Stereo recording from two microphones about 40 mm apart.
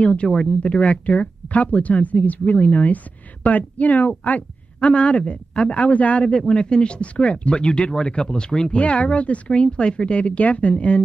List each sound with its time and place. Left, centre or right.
0.0 s speech: left
4.7 s speech: left
6.2 s speech: left
8.7 s speech: left